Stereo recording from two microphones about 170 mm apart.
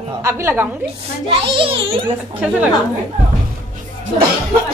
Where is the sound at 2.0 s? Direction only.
10° right (ahead or behind).